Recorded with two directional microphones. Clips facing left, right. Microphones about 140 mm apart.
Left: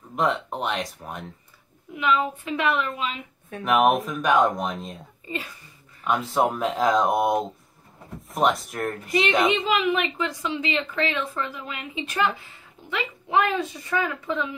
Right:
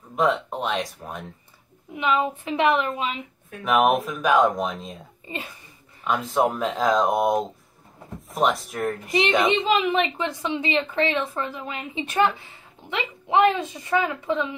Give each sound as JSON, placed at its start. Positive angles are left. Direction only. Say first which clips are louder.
{"t": 0.1, "sound": "speech", "louder": "right 2 dB", "side_deg": 0}
{"t": 2.0, "sound": "a woman's voice", "louder": "right 1 dB", "side_deg": -25}
{"t": 3.6, "sound": "speech", "louder": "even", "side_deg": 0}
{"t": 6.0, "sound": "speech", "louder": "even", "side_deg": 0}
{"t": 9.0, "sound": "a woman's voice", "louder": "even", "side_deg": -20}